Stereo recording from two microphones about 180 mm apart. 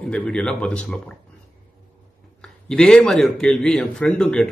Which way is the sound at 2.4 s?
5° left (ahead or behind).